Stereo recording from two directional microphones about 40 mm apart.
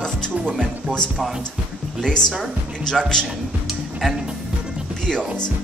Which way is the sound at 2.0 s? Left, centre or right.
Centre.